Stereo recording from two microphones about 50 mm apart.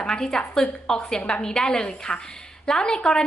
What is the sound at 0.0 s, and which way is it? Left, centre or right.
A woman's voice, centre.